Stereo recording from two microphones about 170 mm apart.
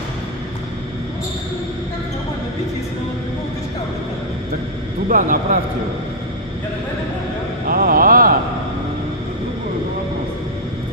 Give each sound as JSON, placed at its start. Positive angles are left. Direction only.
{"t": 5.0, "sound": "a man's voice", "side_deg": -55}
{"t": 7.6, "sound": "vehicle", "side_deg": -60}